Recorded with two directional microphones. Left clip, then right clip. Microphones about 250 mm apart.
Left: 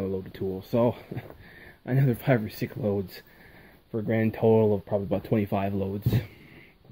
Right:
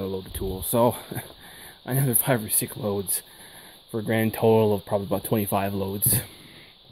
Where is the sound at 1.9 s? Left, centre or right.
Centre.